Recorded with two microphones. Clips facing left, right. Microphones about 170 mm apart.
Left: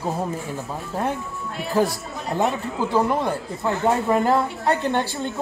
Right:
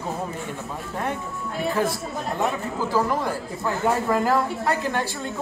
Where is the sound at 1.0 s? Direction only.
Centre (ahead or behind).